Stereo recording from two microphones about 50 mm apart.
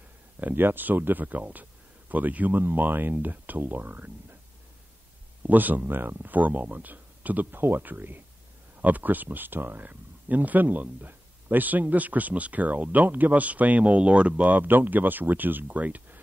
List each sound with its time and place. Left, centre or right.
0.4 s speech: right
5.4 s speech: right
6.3 s speech: right